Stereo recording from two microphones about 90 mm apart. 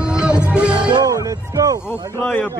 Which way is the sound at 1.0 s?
40° right (ahead or behind).